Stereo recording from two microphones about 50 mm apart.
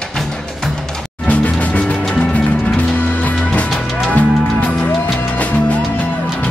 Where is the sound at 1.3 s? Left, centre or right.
Left.